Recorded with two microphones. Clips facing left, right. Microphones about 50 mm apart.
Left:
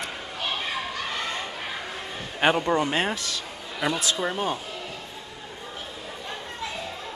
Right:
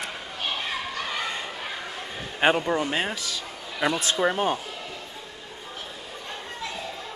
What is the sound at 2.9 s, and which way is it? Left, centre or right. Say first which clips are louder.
Speech: left 2 dB; centre.